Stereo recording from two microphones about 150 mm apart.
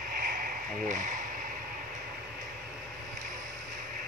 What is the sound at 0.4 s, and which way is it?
Insect, 60° right (ahead or behind).